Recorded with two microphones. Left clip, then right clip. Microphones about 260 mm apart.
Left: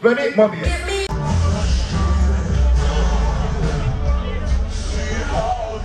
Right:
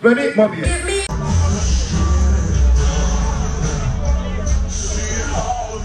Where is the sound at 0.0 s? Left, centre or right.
Left.